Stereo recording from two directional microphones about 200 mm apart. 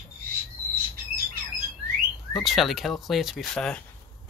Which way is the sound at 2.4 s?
Centre (ahead or behind).